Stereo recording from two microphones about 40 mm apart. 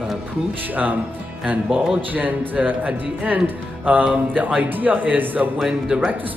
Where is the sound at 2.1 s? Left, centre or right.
Right.